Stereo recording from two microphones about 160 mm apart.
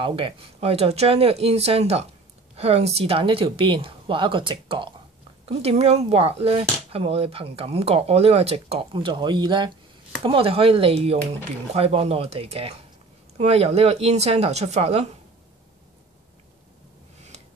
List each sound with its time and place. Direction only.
0.0 s speech: 35° right (ahead or behind)